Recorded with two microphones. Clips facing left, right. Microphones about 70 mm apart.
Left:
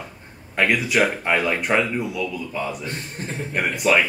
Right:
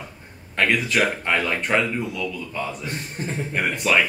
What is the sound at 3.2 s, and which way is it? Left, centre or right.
Speech, centre.